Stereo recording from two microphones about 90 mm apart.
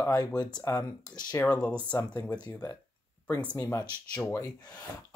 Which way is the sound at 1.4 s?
30° left (ahead or behind).